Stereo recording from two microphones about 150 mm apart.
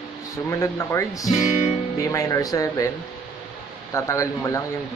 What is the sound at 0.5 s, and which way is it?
Speech, 20° left (ahead or behind).